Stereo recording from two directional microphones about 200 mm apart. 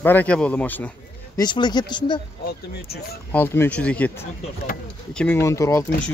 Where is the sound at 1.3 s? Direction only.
20° left (ahead or behind).